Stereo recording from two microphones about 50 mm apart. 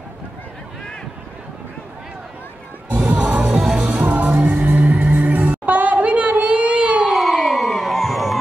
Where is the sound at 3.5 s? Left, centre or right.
Centre.